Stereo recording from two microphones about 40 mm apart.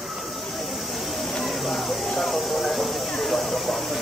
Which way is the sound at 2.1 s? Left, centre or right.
Centre.